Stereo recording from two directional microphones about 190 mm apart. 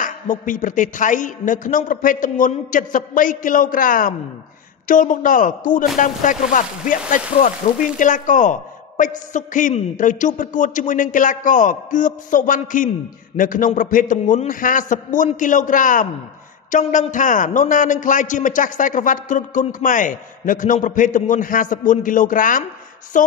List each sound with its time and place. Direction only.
0.0 s a man's voice: 45° left (ahead or behind)